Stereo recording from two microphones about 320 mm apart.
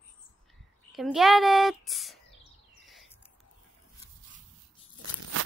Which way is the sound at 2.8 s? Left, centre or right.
Centre.